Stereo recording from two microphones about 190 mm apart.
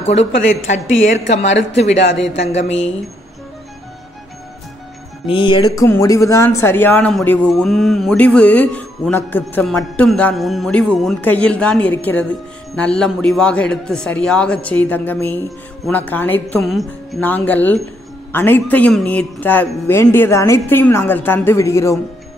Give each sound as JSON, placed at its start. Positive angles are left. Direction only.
{"t": 0.0, "sound": "a woman's voice", "side_deg": 35}
{"t": 1.8, "sound": "a woman's voice", "side_deg": 35}
{"t": 2.0, "sound": "speech", "side_deg": 70}
{"t": 5.2, "sound": "speech", "side_deg": 25}